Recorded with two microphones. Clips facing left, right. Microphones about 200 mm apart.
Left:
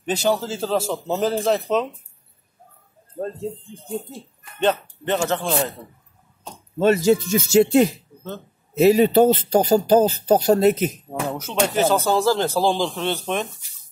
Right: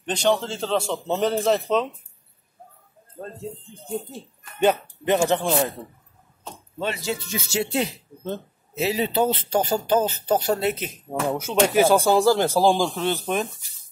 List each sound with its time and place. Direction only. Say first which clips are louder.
0.0 s a man's voice: left 1 dB; 5° left (ahead or behind)
4.6 s speech: right 1 dB; 10° right (ahead or behind)
6.8 s speech: left 11 dB; 45° left (ahead or behind)
11.2 s speech: right 2 dB; 10° right (ahead or behind)